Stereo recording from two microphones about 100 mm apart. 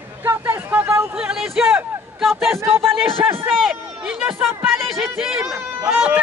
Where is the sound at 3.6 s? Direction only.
5° right (ahead or behind).